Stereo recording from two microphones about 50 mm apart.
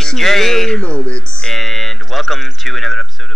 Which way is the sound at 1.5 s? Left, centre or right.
Centre.